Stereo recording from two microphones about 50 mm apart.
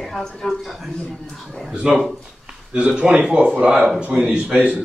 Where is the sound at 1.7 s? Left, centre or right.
Centre.